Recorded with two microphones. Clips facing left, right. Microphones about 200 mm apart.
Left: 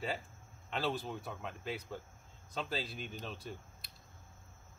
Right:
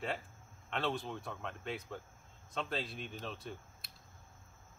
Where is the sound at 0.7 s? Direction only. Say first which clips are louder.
Even; centre (ahead or behind).